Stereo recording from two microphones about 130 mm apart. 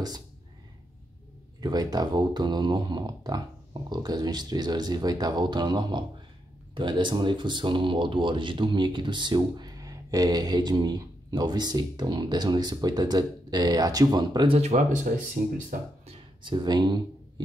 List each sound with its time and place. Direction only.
1.6 s speech: 30° right (ahead or behind)
14.6 s speech: 60° right (ahead or behind); by 15.8 s 90° right
16.1 s speech: 35° right (ahead or behind)